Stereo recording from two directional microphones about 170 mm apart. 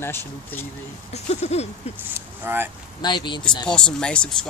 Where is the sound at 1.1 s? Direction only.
40° left (ahead or behind).